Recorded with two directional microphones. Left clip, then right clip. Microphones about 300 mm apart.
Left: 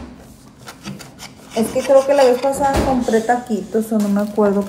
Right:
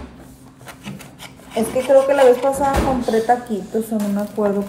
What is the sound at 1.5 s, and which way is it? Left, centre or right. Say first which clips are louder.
Speech: left 1 dB; centre.